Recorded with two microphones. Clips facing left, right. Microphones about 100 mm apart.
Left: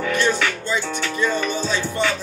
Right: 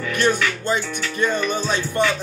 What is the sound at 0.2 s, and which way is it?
Music, 50° right (ahead or behind).